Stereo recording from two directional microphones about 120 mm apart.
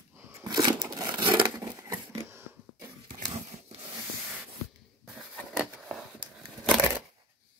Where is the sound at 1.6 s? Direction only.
30° right (ahead or behind).